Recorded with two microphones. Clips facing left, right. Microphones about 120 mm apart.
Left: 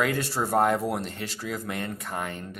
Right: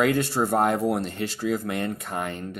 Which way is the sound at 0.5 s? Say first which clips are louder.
Even; 25° right (ahead or behind).